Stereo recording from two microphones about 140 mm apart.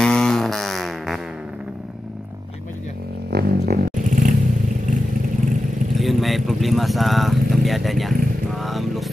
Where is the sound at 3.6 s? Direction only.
90° right.